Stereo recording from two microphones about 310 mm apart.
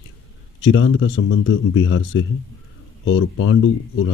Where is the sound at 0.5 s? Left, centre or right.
Left.